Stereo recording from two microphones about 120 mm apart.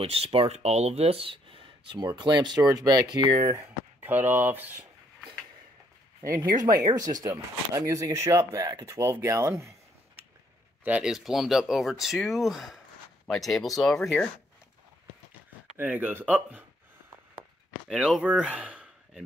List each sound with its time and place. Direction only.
0.0 s speech: 55° right (ahead or behind); by 3.3 s 35° right (ahead or behind)
3.4 s speech: 20° right (ahead or behind)
6.2 s speech: 25° right (ahead or behind)
10.8 s speech: 10° right (ahead or behind)
15.8 s speech: 15° right (ahead or behind)
17.8 s speech: 5° right (ahead or behind)